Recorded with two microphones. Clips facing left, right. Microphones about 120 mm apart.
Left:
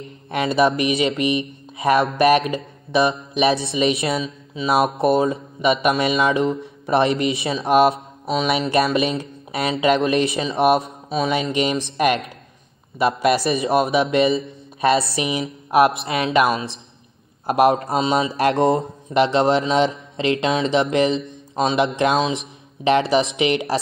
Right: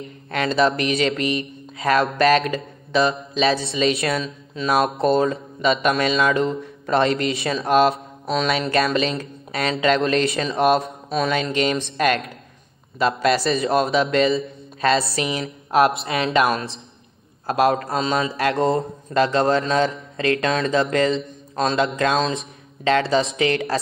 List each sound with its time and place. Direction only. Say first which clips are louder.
0.3 s a man's voice: left 1 dB; 15° left (ahead or behind)
17.5 s a man's voice: left 2 dB; 20° left (ahead or behind)